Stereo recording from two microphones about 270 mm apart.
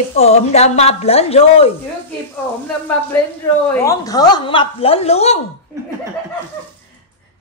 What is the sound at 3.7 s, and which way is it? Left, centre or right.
A woman's voice, centre.